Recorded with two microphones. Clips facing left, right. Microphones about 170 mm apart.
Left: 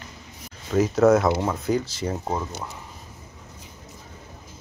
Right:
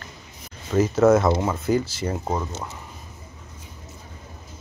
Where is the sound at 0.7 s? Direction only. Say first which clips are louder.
Right 1 dB; centre (ahead or behind).